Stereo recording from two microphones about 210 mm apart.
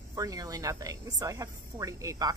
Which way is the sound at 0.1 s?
15° right (ahead or behind).